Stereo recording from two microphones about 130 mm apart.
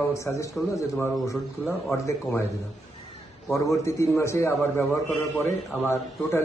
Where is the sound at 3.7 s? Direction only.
25° left (ahead or behind).